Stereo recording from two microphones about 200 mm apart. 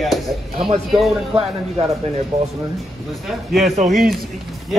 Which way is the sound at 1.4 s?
30° right (ahead or behind).